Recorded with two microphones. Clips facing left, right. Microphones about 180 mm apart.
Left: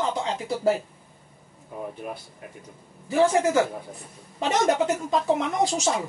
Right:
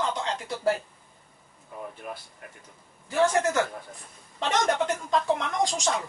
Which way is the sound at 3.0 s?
10° left (ahead or behind).